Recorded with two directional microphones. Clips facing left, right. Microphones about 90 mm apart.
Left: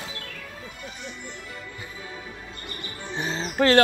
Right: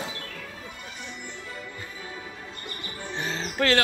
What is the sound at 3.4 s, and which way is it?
Wild animals, 35° left (ahead or behind).